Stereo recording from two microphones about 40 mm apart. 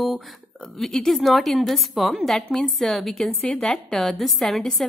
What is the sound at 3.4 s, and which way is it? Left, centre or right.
Speech, left.